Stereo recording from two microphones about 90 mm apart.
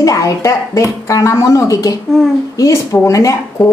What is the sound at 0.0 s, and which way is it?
Speech, 40° left (ahead or behind).